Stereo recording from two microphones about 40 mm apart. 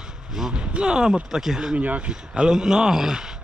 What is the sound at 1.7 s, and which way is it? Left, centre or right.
Speech, right.